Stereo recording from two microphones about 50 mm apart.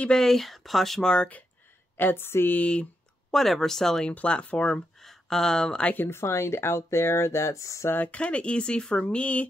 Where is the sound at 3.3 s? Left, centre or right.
Centre.